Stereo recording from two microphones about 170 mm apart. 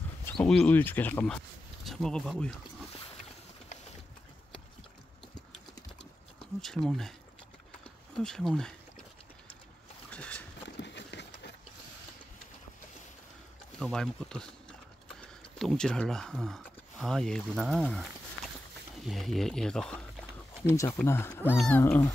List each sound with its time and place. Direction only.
0.4 s speech: 5° left (ahead or behind)
6.6 s speech: centre (ahead or behind)
10.1 s boat: 5° left (ahead or behind)
10.8 s run: 90° left
13.7 s speech: centre (ahead or behind)
20.7 s speech: 15° left (ahead or behind)